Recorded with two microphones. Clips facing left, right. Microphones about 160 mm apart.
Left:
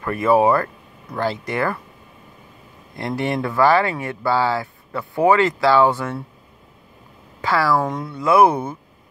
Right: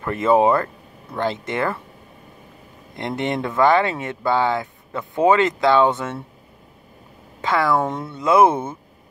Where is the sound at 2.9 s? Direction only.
20° right (ahead or behind).